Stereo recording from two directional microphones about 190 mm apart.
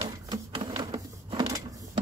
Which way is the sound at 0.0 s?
25° right (ahead or behind).